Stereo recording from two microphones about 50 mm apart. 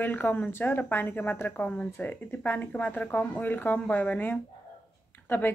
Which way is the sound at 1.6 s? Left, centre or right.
Left.